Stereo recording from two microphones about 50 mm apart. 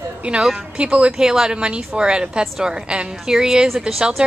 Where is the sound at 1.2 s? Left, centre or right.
Centre.